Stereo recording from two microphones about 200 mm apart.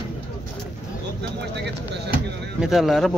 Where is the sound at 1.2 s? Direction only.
55° right (ahead or behind).